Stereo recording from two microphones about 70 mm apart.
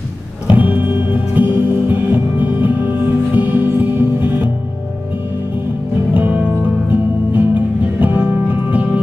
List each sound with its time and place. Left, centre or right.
0.5 s music: right
6.1 s music: right